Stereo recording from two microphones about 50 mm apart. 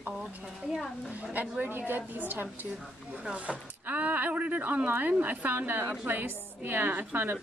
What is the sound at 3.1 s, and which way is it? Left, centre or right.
Speech, right.